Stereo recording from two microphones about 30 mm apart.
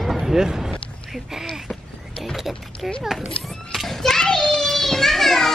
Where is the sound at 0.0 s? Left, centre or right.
Centre.